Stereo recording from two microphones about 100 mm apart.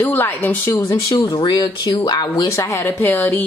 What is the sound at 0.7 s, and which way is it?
Speech, 30° left (ahead or behind).